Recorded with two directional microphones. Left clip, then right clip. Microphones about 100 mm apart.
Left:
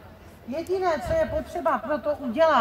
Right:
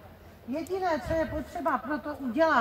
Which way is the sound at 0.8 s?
40° left (ahead or behind).